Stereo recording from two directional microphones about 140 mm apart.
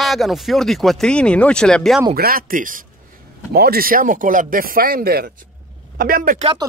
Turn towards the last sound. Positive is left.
turn(degrees=-85)